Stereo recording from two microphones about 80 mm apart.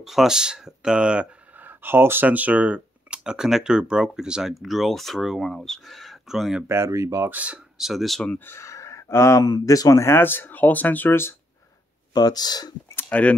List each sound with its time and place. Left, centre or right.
0.0 s speech: centre
1.6 s speech: right; by 6.6 s centre
6.7 s speech: right
7.2 s speech: centre
7.7 s speech: centre
8.5 s a sound: left
9.4 s speech: left
10.0 s speech: left
12.1 s speech: left
13.1 s speech: centre